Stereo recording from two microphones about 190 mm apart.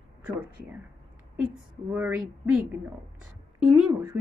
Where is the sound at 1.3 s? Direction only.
5° right (ahead or behind).